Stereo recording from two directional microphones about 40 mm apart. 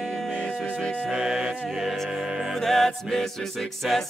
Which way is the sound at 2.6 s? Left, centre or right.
Centre.